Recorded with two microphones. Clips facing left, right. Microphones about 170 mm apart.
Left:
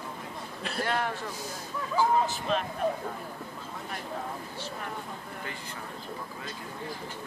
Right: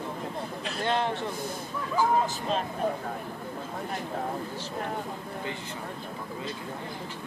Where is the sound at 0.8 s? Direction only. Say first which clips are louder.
Right 3 dB; 25° right (ahead or behind).